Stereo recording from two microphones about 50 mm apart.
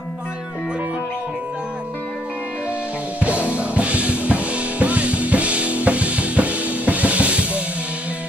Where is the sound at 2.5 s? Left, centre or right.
Right.